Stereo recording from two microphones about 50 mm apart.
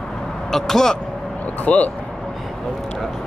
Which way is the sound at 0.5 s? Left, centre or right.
Centre.